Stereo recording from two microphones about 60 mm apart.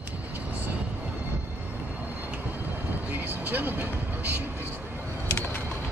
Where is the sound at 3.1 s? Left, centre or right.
Right.